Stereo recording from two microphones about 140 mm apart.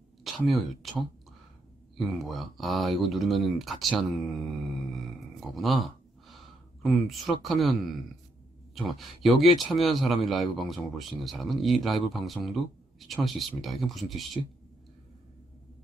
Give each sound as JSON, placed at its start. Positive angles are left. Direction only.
{"t": 0.5, "sound": "speech", "side_deg": 0}
{"t": 2.0, "sound": "speech", "side_deg": 0}